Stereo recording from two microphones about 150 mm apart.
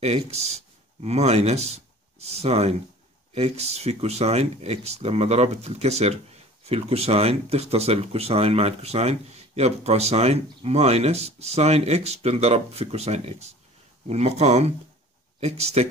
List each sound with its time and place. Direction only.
0.0 s speech: 45° right (ahead or behind)